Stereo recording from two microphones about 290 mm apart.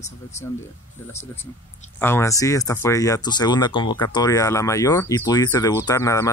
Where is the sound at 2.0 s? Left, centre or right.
Centre.